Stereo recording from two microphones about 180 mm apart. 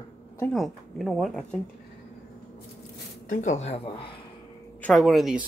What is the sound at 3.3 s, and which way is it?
Speech, 40° left (ahead or behind).